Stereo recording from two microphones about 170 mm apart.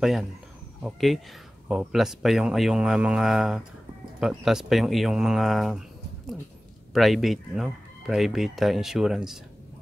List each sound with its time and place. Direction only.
0.0 s speech: centre (ahead or behind)